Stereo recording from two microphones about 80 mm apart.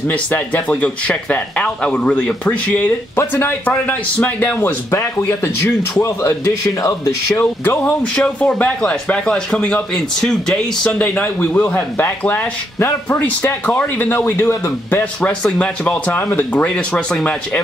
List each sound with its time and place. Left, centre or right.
0.1 s speech: centre
7.8 s speech: centre
15.4 s speech: centre
16.2 s speech: left
16.6 s speech: centre